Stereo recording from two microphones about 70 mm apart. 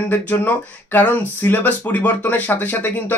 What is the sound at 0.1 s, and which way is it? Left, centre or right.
Speech, left.